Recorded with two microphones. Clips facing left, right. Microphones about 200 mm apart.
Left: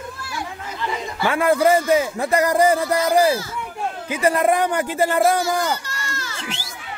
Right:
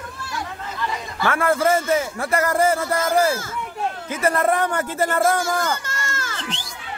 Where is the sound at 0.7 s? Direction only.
15° left (ahead or behind).